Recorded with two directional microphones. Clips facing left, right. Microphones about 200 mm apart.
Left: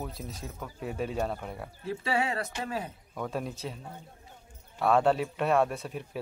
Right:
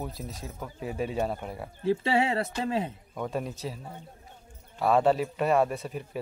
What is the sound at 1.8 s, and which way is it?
Speech, 25° right (ahead or behind).